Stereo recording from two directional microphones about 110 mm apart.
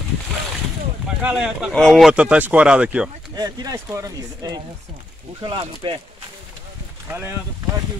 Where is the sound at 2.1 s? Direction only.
10° right (ahead or behind).